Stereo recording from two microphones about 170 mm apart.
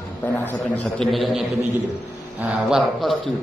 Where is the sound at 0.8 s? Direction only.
Centre (ahead or behind).